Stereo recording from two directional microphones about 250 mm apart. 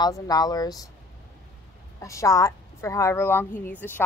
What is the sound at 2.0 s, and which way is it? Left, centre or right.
A woman's voice, centre.